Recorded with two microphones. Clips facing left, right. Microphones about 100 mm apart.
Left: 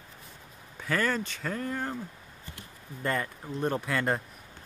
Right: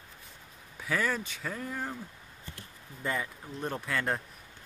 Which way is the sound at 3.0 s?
Centre (ahead or behind).